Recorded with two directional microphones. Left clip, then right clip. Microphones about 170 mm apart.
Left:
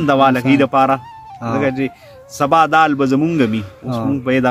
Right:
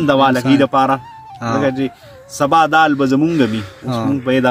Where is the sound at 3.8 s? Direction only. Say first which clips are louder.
Right 2 dB; 5° right (ahead or behind).